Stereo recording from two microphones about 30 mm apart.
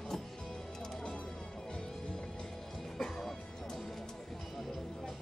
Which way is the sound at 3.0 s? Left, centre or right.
Centre.